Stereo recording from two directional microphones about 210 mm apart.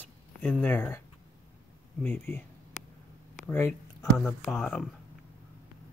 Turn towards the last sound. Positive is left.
turn(degrees=5)  # may be behind; listen again after turning